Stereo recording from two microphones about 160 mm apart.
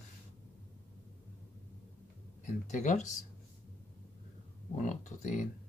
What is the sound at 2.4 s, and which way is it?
Speech, 50° left (ahead or behind).